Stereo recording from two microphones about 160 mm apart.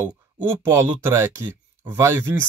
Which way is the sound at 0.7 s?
15° right (ahead or behind).